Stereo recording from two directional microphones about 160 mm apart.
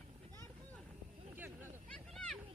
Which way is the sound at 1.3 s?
15° right (ahead or behind).